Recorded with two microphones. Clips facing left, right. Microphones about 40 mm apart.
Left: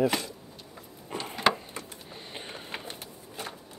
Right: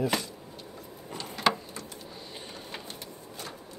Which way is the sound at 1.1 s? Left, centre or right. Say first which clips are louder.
Left 4 dB; left.